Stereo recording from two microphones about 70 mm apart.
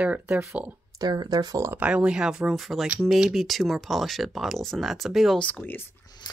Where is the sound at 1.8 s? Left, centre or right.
Centre.